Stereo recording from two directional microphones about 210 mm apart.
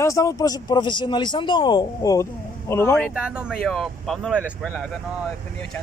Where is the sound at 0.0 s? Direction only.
15° left (ahead or behind).